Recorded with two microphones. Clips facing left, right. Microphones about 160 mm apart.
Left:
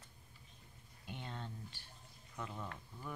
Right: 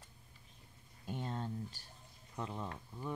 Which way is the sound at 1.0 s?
40° right (ahead or behind).